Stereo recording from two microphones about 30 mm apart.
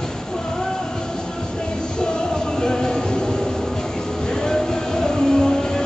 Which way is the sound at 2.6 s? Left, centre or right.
Left.